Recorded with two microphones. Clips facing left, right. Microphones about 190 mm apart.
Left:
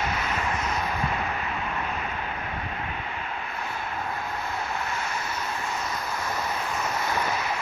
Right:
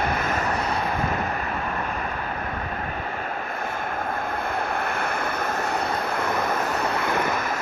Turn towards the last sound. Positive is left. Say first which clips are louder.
# right 6 dB
turn(degrees=-55)  # may be behind; listen again after turning